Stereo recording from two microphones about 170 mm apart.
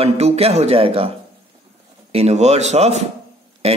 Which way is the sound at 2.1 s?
40° right (ahead or behind).